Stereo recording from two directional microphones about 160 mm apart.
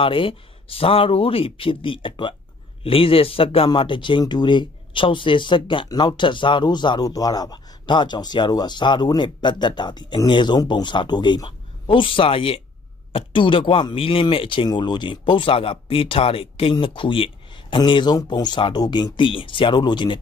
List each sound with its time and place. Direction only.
0.0 s speech: 35° left (ahead or behind)